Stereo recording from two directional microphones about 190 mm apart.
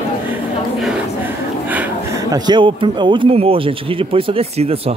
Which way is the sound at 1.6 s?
10° right (ahead or behind).